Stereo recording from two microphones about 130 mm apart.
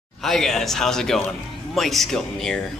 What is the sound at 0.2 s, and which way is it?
Speech, centre (ahead or behind).